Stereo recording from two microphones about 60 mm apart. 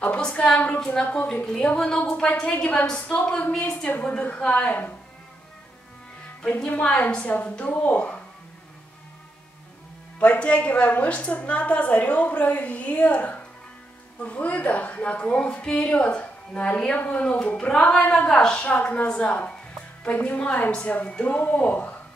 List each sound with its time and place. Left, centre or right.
0.0 s a woman's voice: left
6.8 s a woman's voice: centre
10.1 s a woman's voice: left